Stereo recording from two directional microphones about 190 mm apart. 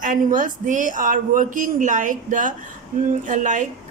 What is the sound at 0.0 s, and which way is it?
Speech, 45° right (ahead or behind).